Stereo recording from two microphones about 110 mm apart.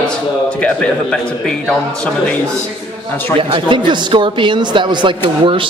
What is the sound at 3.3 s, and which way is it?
Speech, 45° right (ahead or behind).